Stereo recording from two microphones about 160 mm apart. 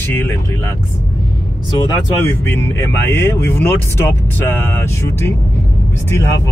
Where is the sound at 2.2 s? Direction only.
15° left (ahead or behind).